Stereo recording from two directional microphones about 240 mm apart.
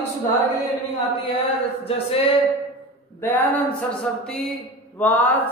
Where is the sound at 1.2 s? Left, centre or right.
Left.